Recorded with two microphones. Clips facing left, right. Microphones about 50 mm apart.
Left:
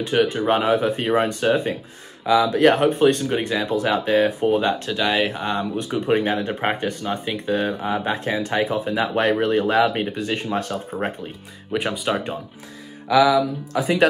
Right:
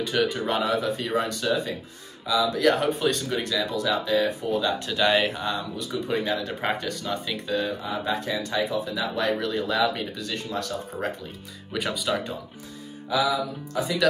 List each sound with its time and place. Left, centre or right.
0.0 s speech: left
0.6 s speech: left
13.1 s music: left
13.7 s speech: left